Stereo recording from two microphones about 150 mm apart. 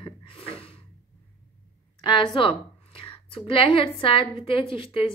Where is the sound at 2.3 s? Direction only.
35° left (ahead or behind).